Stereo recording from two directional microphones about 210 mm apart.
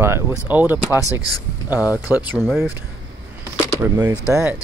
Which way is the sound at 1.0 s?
20° left (ahead or behind).